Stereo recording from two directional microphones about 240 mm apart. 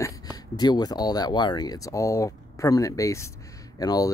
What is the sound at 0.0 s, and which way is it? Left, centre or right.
Speech, centre.